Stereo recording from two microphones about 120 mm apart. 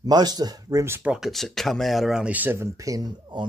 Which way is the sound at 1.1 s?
Centre (ahead or behind).